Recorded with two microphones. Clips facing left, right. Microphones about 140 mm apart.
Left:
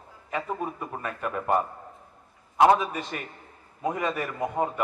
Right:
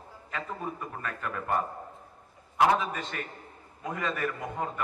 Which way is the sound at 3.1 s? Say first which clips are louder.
Left 1 dB; 15° left (ahead or behind).